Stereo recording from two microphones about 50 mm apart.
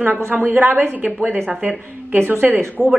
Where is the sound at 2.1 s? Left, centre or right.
Right.